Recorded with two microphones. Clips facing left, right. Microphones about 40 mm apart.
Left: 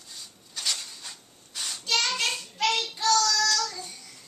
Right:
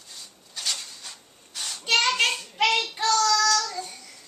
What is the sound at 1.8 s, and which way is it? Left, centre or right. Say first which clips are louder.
Child singing: right 5 dB; right.